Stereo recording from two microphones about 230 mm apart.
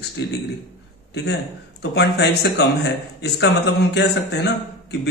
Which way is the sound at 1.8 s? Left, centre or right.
Left.